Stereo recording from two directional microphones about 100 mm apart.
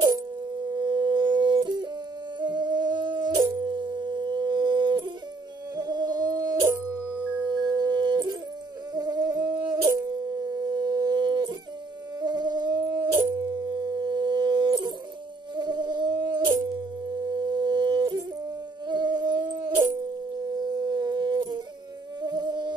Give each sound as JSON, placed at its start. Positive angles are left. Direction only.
{"t": 0.7, "sound": "music", "side_deg": -50}
{"t": 2.4, "sound": "humming", "side_deg": -50}
{"t": 5.8, "sound": "a sound", "side_deg": -45}
{"t": 6.7, "sound": "howl", "side_deg": -30}
{"t": 7.4, "sound": "dog", "side_deg": -45}
{"t": 8.9, "sound": "humming", "side_deg": -40}
{"t": 9.9, "sound": "a sound", "side_deg": -35}
{"t": 12.2, "sound": "dog", "side_deg": -45}
{"t": 15.5, "sound": "mosquito", "side_deg": -45}
{"t": 18.9, "sound": "music", "side_deg": -45}
{"t": 20.4, "sound": "a sound", "side_deg": -40}
{"t": 22.2, "sound": "humming", "side_deg": -45}